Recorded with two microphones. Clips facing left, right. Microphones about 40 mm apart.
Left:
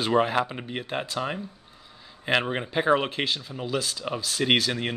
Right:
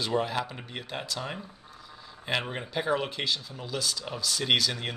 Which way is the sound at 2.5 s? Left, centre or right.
Left.